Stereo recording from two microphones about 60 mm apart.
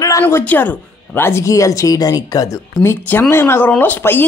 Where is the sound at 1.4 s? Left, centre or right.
Left.